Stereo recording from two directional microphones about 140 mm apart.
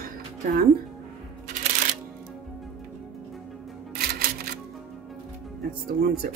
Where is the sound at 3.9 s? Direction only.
90° right.